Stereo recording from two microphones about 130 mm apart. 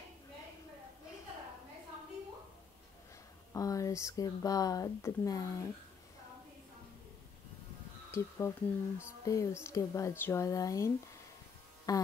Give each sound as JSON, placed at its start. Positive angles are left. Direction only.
{"t": 3.5, "sound": "speech", "side_deg": 25}
{"t": 8.1, "sound": "speech", "side_deg": 20}
{"t": 11.9, "sound": "speech", "side_deg": 30}